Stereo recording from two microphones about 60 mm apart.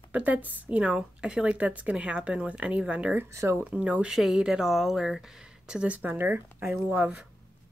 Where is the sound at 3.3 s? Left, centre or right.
Right.